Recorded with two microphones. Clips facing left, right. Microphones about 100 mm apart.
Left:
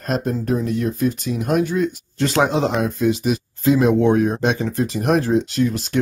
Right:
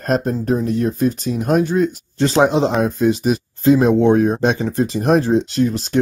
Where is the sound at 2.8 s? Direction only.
35° right (ahead or behind).